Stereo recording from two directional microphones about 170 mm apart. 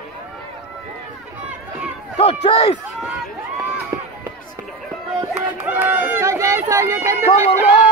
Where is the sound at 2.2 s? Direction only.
35° left (ahead or behind).